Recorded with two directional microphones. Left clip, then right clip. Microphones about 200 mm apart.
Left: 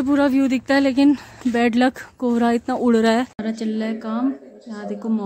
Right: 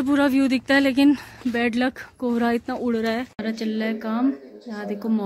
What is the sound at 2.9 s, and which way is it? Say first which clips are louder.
Speech: left 8 dB; 25° left (ahead or behind).